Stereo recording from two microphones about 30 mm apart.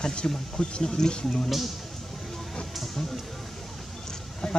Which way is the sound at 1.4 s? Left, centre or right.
Centre.